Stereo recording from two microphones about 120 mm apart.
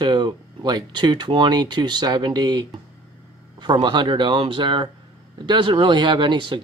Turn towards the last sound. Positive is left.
turn(degrees=-40)  # may be behind; listen again after turning